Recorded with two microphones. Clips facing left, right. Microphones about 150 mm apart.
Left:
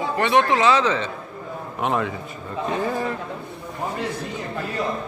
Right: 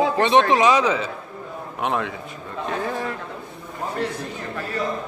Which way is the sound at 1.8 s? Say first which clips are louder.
Left 1 dB; centre (ahead or behind).